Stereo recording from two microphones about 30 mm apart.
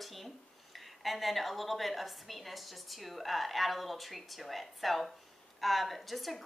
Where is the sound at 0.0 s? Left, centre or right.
Centre.